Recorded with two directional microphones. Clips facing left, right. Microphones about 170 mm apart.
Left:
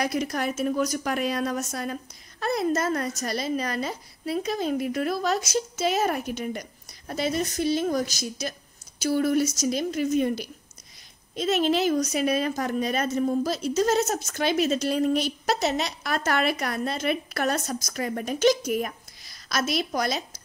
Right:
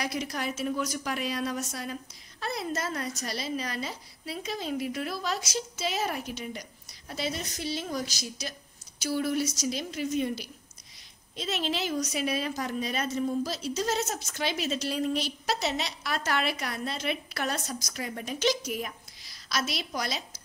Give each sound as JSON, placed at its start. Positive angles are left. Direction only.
{"t": 0.0, "sound": "a woman's voice", "side_deg": 50}